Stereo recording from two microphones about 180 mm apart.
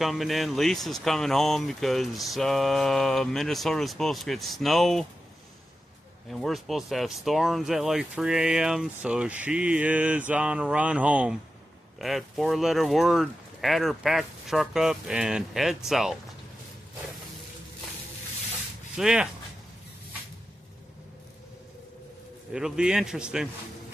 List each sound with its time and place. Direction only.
0.0 s speech: centre (ahead or behind)
6.2 s speech: centre (ahead or behind)
18.9 s speech: 5° right (ahead or behind)
22.5 s speech: 5° right (ahead or behind)